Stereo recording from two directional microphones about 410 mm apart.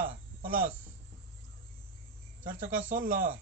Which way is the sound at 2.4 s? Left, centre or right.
Centre.